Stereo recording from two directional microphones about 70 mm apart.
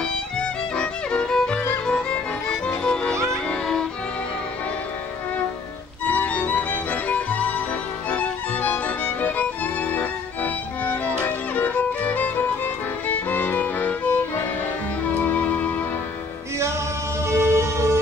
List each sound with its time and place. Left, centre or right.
0.4 s music: centre
6.0 s music: left
17.3 s music: right